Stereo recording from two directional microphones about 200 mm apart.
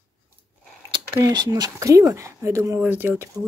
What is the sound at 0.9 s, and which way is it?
Speech, 25° right (ahead or behind).